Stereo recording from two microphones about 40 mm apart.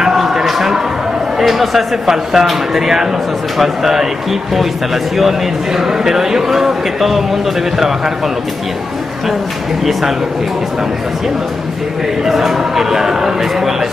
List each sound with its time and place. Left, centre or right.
0.0 s a sound: centre
1.4 s speech: centre
12.3 s speech: centre